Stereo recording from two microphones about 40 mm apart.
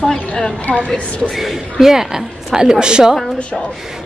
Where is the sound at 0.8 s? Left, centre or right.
Left.